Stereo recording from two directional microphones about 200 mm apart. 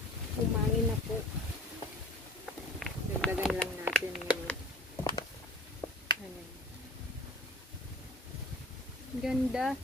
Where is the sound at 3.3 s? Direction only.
Centre (ahead or behind).